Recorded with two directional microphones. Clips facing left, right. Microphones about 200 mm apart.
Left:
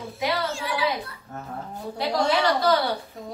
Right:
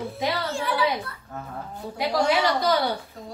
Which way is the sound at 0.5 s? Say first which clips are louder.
Right 3 dB; 55° right (ahead or behind).